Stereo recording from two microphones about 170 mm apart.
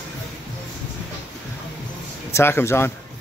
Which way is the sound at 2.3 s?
15° left (ahead or behind).